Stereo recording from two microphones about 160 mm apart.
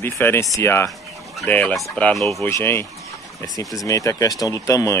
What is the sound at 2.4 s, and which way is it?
Speech, 15° left (ahead or behind).